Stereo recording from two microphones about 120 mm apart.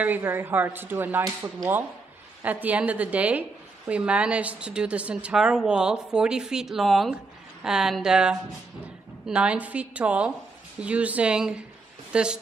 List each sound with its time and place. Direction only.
0.0 s a woman's voice: 15° right (ahead or behind)
2.4 s a woman's voice: 15° right (ahead or behind)